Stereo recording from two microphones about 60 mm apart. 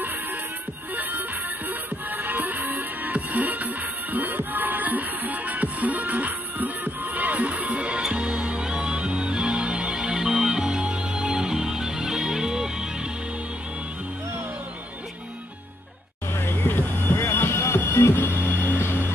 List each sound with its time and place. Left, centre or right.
1.7 s music: right; by 13.1 s centre
16.3 s music: left